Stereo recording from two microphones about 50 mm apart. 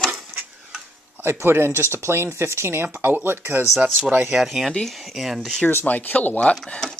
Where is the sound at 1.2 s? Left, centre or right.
Right.